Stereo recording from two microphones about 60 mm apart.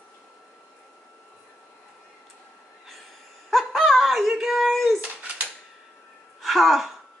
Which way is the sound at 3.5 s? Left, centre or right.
Centre.